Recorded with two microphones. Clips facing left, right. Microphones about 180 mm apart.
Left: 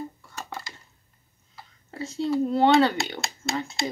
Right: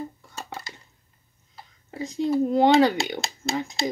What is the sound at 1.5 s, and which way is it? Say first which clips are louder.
Speech: right 2 dB; 15° right (ahead or behind).